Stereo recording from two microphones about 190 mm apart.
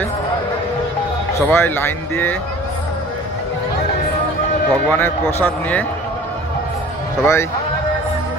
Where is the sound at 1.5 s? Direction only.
10° left (ahead or behind).